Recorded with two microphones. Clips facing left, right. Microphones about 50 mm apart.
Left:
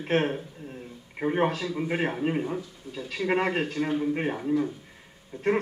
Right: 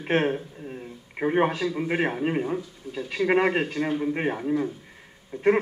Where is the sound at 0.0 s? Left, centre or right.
Centre.